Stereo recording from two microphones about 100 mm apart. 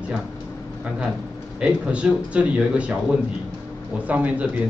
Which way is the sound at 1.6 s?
10° right (ahead or behind).